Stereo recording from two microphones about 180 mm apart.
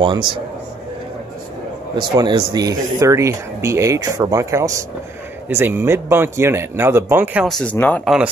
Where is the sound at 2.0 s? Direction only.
25° right (ahead or behind).